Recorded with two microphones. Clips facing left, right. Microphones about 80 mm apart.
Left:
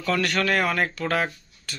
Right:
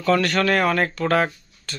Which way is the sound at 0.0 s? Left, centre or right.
Centre.